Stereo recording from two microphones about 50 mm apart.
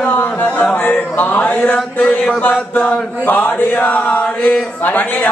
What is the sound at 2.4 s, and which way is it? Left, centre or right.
Speech, left.